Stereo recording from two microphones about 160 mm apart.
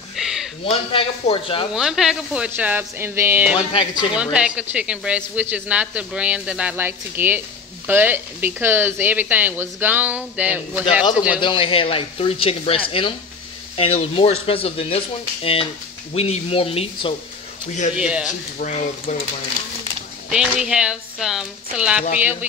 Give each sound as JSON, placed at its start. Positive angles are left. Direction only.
{"t": 0.1, "sound": "a sound", "side_deg": 0}
{"t": 0.7, "sound": "speech", "side_deg": 35}
{"t": 1.7, "sound": "a woman's voice", "side_deg": -5}
{"t": 11.3, "sound": "speech", "side_deg": 30}
{"t": 17.9, "sound": "a woman's voice", "side_deg": -5}
{"t": 18.6, "sound": "speech", "side_deg": 45}
{"t": 20.2, "sound": "a woman's voice", "side_deg": -5}